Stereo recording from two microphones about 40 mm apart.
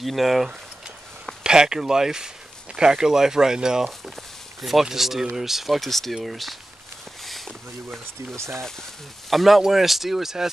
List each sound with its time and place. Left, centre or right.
0.0 s speech: centre
1.4 s speech: centre
4.6 s speech: centre